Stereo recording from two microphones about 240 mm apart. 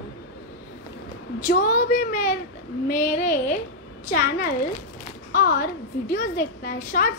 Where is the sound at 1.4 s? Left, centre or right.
Left.